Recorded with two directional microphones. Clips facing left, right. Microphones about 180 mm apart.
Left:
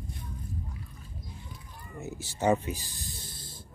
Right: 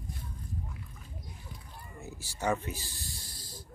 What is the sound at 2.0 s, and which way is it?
Snake, 20° left (ahead or behind).